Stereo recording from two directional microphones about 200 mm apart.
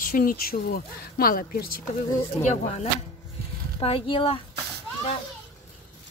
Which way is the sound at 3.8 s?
25° left (ahead or behind).